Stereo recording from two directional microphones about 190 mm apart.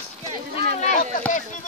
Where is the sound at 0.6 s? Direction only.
50° right (ahead or behind).